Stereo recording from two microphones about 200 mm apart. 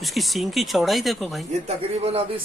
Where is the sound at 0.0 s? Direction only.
Centre (ahead or behind).